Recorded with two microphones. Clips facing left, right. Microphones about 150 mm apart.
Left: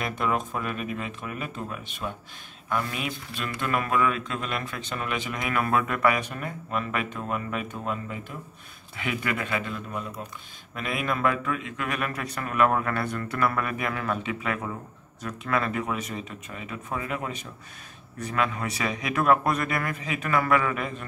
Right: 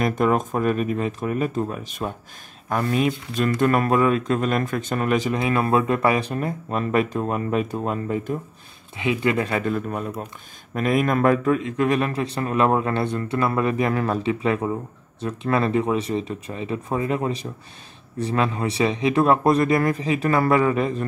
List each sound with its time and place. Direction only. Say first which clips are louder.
0.0 s a man's voice: right 7 dB; 45° right (ahead or behind)
8.9 s a man's voice: right 8 dB; 20° right (ahead or behind)